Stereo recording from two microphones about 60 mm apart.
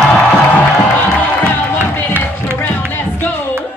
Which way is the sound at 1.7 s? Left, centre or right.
Left.